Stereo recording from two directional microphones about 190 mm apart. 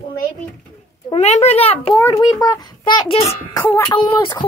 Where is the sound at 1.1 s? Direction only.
35° left (ahead or behind).